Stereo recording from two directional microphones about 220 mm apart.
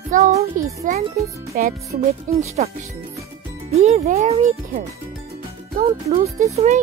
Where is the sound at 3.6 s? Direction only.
30° right (ahead or behind).